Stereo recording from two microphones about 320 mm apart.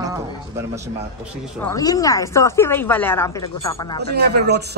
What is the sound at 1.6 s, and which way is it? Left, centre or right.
Speech, centre.